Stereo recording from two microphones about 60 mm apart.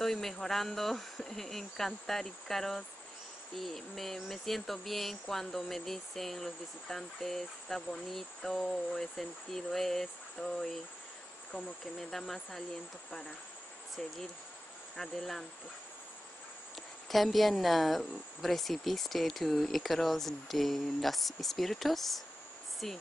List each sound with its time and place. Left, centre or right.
0.0 s speech: centre
13.9 s speech: centre
17.1 s speech: centre